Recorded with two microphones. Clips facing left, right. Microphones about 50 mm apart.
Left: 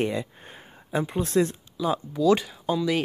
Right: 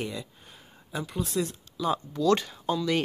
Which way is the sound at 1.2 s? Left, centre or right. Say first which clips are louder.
Left 6 dB; left.